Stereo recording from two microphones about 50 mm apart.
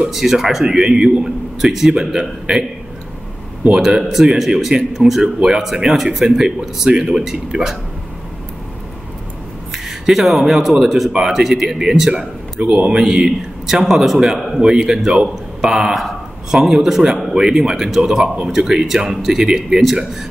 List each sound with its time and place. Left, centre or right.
0.1 s speech: centre
3.7 s speech: centre
9.7 s speech: centre
12.5 s a man's voice: centre